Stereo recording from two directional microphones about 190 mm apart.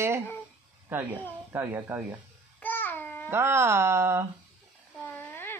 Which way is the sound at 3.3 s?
15° right (ahead or behind).